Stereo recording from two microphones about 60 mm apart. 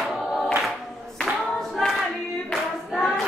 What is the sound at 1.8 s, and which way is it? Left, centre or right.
Choir, centre.